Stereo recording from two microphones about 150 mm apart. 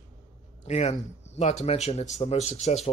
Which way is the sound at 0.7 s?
45° left (ahead or behind).